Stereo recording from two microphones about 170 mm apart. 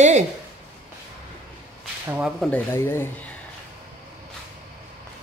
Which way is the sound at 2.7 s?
15° left (ahead or behind).